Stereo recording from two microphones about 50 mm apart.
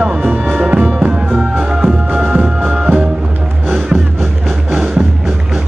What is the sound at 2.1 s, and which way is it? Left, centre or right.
Music, right.